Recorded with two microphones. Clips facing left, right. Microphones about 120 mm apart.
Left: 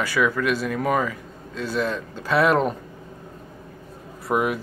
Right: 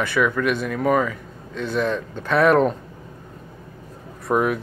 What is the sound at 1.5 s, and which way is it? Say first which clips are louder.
Speech: right 2 dB; 55° right (ahead or behind).